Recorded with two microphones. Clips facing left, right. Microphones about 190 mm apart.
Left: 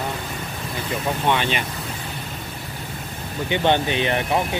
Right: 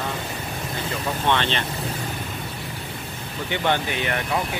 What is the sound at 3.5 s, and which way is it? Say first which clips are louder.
Speech: left 4 dB; 20° left (ahead or behind).